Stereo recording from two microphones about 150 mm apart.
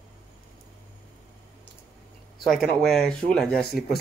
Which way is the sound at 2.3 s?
Centre (ahead or behind).